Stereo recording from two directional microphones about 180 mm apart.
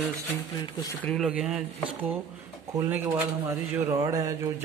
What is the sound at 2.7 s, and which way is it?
Speech, 15° right (ahead or behind).